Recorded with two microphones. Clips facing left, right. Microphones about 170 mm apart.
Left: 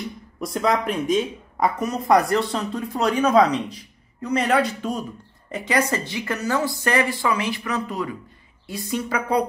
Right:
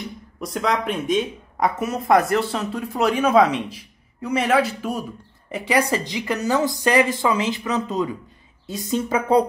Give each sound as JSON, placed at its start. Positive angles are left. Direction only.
{"t": 0.0, "sound": "a woman's voice", "side_deg": 0}